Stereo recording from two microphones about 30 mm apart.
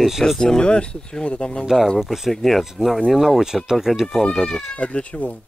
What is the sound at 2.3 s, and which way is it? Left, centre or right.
Speech, centre.